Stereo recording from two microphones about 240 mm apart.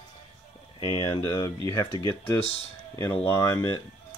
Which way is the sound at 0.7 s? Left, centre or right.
Left.